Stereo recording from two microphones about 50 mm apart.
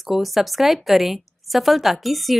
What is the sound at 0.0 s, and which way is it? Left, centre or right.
A woman's voice, centre.